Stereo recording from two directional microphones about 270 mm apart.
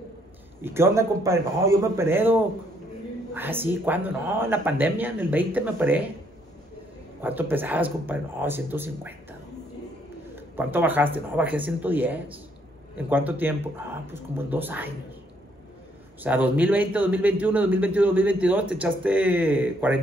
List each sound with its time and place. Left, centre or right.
0.6 s a man's voice: centre
7.2 s a man's voice: centre
10.3 s a man's voice: centre
16.2 s a man's voice: centre